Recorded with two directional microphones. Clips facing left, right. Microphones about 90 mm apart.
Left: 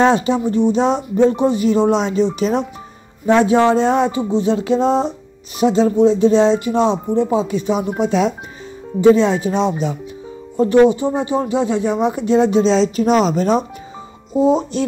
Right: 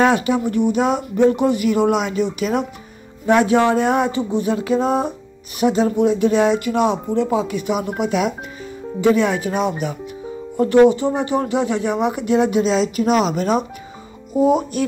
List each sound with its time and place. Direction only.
0.0 s speech: 25° left (ahead or behind)